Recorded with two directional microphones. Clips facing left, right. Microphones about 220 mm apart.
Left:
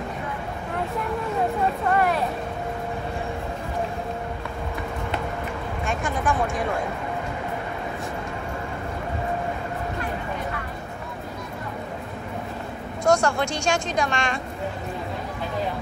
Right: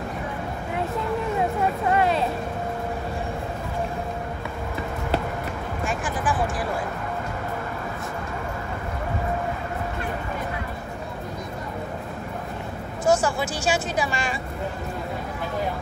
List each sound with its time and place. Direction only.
1.9 s vehicle: 20° right (ahead or behind)
5.9 s a sound: centre (ahead or behind)
13.0 s speech: 5° right (ahead or behind)